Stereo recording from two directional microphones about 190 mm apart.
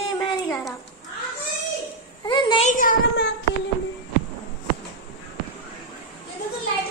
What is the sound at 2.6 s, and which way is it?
Speech, 45° left (ahead or behind).